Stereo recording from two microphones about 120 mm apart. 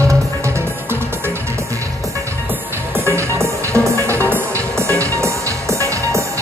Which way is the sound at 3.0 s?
25° right (ahead or behind).